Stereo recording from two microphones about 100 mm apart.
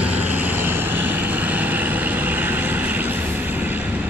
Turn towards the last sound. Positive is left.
turn(degrees=-15)  # may be behind; listen again after turning